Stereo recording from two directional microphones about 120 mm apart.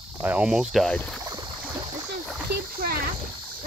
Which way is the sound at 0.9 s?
10° left (ahead or behind).